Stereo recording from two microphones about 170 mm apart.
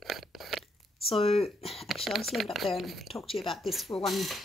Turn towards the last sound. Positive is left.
turn(degrees=0)  # may be behind; listen again after turning